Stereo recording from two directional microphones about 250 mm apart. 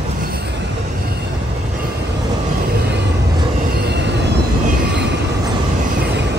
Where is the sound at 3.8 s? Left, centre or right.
Right.